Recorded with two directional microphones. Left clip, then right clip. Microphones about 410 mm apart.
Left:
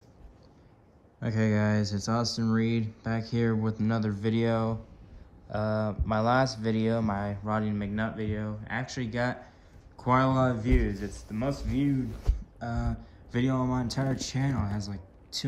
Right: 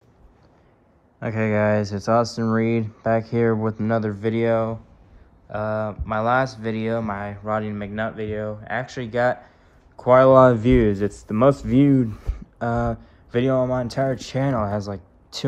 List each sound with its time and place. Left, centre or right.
1.2 s speech: centre
10.4 s speech: centre
11.7 s speech: right
12.4 s a sound: centre
12.9 s speech: centre